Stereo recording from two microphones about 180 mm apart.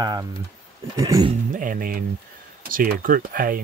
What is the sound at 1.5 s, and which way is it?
Speech, 50° right (ahead or behind).